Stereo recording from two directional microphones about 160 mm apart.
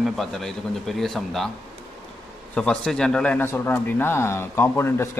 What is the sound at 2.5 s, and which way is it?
A man's voice, 5° left (ahead or behind).